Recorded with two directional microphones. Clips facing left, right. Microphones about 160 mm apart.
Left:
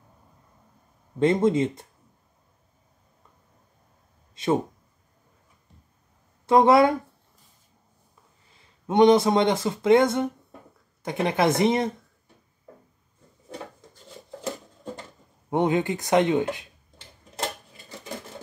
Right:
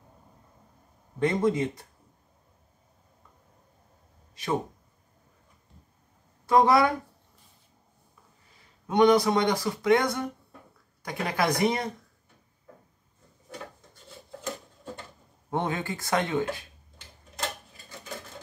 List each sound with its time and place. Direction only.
1.2 s speech: 25° left (ahead or behind)
4.4 s speech: 25° left (ahead or behind)
6.4 s speech: 25° left (ahead or behind)
8.8 s speech: 25° left (ahead or behind)
15.5 s speech: 20° left (ahead or behind)